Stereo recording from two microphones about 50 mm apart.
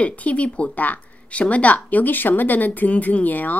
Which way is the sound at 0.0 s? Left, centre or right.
Left.